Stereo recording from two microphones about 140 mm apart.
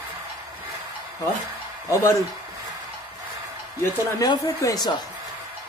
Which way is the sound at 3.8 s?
25° left (ahead or behind).